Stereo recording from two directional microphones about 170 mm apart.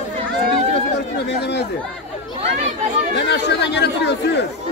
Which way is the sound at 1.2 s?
85° left.